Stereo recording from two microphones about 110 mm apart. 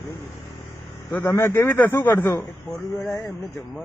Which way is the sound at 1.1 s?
20° left (ahead or behind).